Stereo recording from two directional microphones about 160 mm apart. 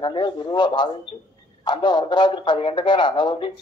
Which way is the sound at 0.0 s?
30° left (ahead or behind).